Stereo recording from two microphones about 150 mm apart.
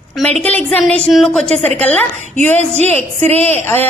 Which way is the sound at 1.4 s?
45° right (ahead or behind).